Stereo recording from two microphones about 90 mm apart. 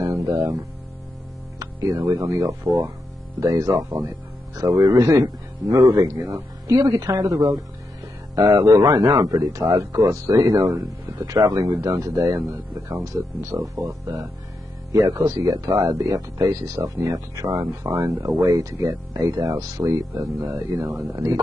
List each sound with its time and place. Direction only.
0.0 s a sound: 35° right (ahead or behind)
1.6 s music: 40° right (ahead or behind)
2.0 s speech: 40° right (ahead or behind)